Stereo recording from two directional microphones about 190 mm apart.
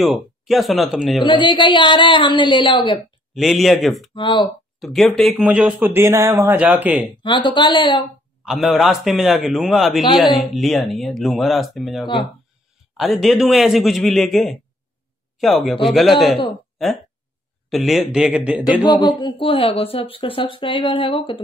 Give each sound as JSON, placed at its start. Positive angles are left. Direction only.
{"t": 0.0, "sound": "speech", "side_deg": 0}
{"t": 1.2, "sound": "speech", "side_deg": 25}
{"t": 3.3, "sound": "speech", "side_deg": 0}
{"t": 4.1, "sound": "speech", "side_deg": 25}
{"t": 4.7, "sound": "speech", "side_deg": 0}
{"t": 7.2, "sound": "speech", "side_deg": 25}
{"t": 8.5, "sound": "speech", "side_deg": 0}
{"t": 17.6, "sound": "speech", "side_deg": 0}
{"t": 18.8, "sound": "speech", "side_deg": 25}